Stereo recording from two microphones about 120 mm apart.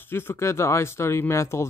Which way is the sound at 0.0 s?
20° left (ahead or behind).